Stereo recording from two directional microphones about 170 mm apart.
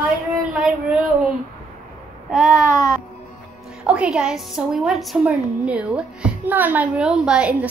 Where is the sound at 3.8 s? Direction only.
5° right (ahead or behind).